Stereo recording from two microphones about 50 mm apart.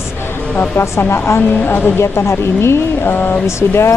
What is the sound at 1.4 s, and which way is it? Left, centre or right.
Speech, left.